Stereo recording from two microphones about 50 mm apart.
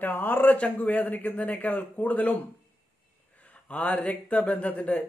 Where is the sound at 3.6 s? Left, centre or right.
Left.